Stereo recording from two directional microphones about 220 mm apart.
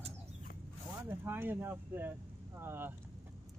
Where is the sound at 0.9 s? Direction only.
10° right (ahead or behind).